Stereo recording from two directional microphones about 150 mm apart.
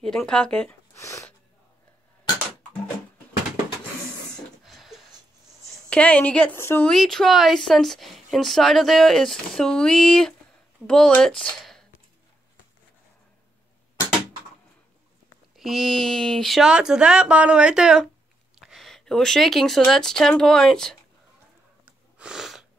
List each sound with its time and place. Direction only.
0.0 s speech: 5° left (ahead or behind)
0.9 s speech: 20° left (ahead or behind)
4.6 s a sound: centre (ahead or behind)
5.9 s speech: 10° left (ahead or behind)
6.9 s speech: centre (ahead or behind)
15.5 s speech: centre (ahead or behind)
22.2 s sniff: 5° right (ahead or behind)